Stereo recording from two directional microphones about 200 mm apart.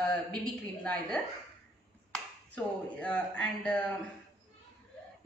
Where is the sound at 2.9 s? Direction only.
5° left (ahead or behind).